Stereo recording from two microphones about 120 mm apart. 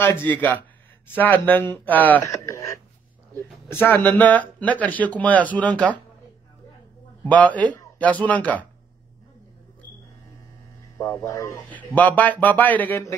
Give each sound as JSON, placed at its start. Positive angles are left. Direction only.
{"t": 0.0, "sound": "speech", "side_deg": 20}
{"t": 2.2, "sound": "a sound", "side_deg": 25}
{"t": 3.3, "sound": "speech", "side_deg": 15}
{"t": 7.2, "sound": "speech", "side_deg": 10}
{"t": 11.0, "sound": "speech", "side_deg": 25}
{"t": 11.7, "sound": "speech", "side_deg": 15}